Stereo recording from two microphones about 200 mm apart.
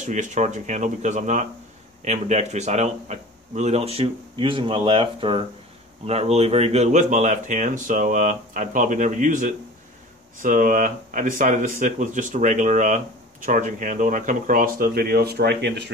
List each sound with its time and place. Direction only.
0.0 s speech: 35° right (ahead or behind); by 15.9 s 55° right (ahead or behind)